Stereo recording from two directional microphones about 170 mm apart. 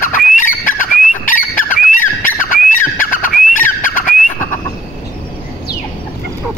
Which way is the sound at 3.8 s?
50° left (ahead or behind).